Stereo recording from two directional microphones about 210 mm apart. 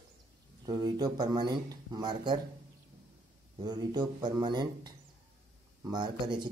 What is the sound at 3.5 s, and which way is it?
A man's voice, 20° right (ahead or behind).